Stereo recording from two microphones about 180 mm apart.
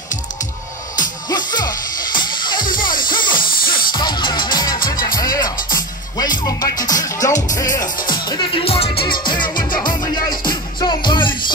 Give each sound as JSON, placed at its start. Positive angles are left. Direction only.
{"t": 1.3, "sound": "music", "side_deg": 25}
{"t": 2.6, "sound": "music", "side_deg": 50}
{"t": 3.1, "sound": "music", "side_deg": 25}
{"t": 3.6, "sound": "music", "side_deg": 50}
{"t": 3.9, "sound": "music", "side_deg": 25}